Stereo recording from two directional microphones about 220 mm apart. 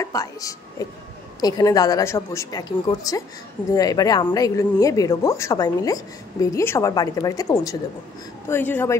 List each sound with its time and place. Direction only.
0.0 s speech: 15° left (ahead or behind)